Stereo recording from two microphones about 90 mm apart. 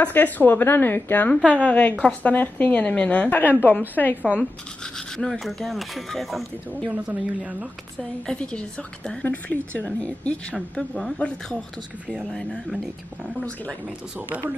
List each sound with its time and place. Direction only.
0.0 s a woman's voice: 20° left (ahead or behind)
4.2 s speech: 15° right (ahead or behind)
4.9 s speech: 5° left (ahead or behind)
6.9 s speech: 15° right (ahead or behind)
8.0 s a woman's voice: 10° left (ahead or behind)